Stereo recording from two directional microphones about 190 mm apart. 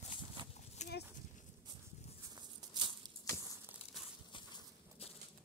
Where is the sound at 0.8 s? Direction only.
40° left (ahead or behind).